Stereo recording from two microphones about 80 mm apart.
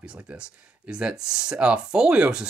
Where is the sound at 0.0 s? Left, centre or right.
Centre.